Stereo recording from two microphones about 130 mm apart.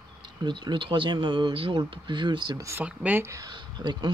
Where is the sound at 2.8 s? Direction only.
10° right (ahead or behind).